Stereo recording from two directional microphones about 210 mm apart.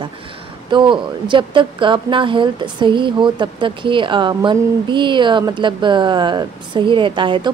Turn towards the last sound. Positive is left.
turn(degrees=-25)  # may be behind; listen again after turning